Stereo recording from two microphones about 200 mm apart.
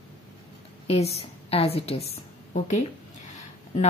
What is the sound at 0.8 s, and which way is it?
A woman's voice, 30° left (ahead or behind).